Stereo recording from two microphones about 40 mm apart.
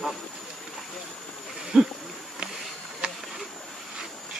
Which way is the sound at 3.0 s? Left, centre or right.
Right.